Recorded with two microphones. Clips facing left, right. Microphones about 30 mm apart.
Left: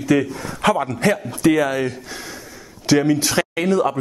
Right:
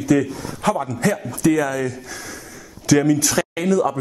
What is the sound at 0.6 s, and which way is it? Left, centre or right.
Speech, left.